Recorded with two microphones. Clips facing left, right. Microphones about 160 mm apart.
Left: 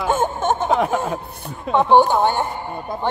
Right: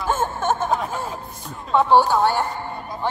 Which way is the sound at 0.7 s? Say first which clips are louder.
Left 5 dB; 70° left (ahead or behind).